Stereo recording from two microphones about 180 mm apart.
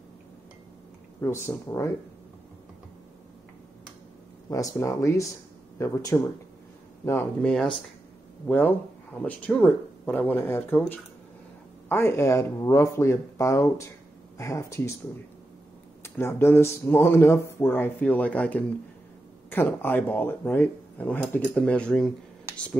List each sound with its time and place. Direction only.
1.2 s speech: 15° left (ahead or behind)
4.5 s speech: 20° left (ahead or behind)
16.0 s speech: 15° left (ahead or behind)